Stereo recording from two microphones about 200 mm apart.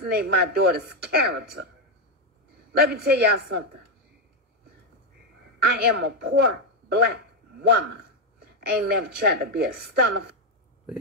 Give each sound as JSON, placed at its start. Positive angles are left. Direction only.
{"t": 0.0, "sound": "speech", "side_deg": -55}
{"t": 2.7, "sound": "speech", "side_deg": -55}
{"t": 5.6, "sound": "a woman's voice", "side_deg": -55}